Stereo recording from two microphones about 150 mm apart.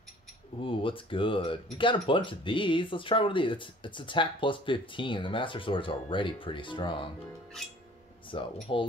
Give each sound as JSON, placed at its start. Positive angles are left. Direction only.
{"t": 0.7, "sound": "speech", "side_deg": 35}
{"t": 8.3, "sound": "speech", "side_deg": 35}